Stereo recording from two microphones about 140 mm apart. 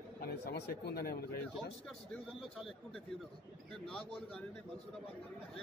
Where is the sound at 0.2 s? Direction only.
90° left.